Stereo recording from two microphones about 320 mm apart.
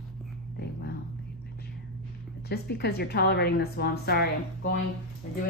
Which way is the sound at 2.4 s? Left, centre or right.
Left.